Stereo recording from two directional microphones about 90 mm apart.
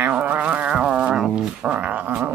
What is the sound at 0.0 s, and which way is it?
Dog, 20° right (ahead or behind).